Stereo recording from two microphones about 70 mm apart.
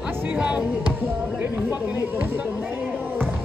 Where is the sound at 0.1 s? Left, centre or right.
Right.